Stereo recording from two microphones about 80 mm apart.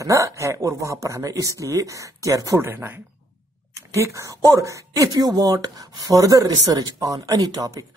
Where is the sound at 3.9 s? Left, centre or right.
Right.